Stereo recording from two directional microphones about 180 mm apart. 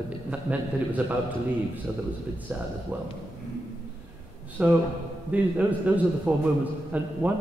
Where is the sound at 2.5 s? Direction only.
10° right (ahead or behind).